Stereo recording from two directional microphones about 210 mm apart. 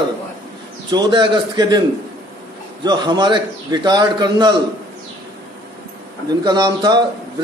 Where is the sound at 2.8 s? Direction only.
20° right (ahead or behind).